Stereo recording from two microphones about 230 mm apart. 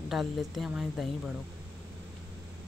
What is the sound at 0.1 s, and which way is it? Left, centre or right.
Speech, centre.